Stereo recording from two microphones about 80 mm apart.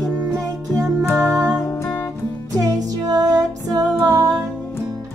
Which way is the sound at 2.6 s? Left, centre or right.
Right.